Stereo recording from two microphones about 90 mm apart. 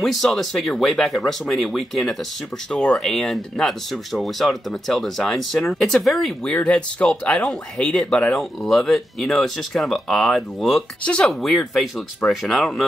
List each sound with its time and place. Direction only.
0.0 s speech: 5° left (ahead or behind)
6.5 s speech: 15° left (ahead or behind)